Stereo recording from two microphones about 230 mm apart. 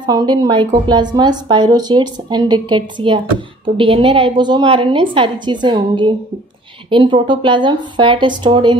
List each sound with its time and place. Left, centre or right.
0.0 s a woman's voice: centre